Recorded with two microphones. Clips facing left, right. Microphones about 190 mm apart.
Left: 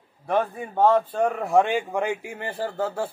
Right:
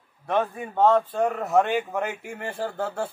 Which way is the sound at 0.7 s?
10° left (ahead or behind).